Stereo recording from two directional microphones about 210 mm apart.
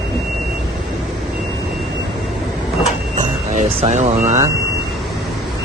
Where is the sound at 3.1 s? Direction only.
35° right (ahead or behind).